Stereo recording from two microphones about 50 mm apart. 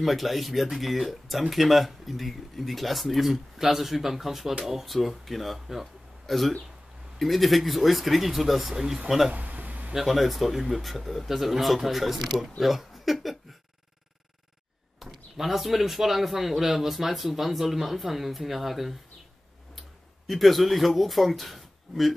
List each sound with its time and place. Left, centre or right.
0.0 s a man's voice: centre
9.3 s a sound: right
9.9 s a man's voice: centre
15.3 s a man's voice: centre
20.2 s a man's voice: centre